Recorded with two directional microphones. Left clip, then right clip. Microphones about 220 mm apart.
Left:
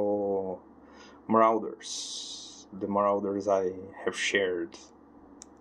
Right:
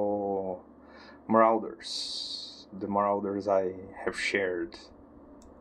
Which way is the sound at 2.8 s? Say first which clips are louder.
Left 1 dB; 5° left (ahead or behind).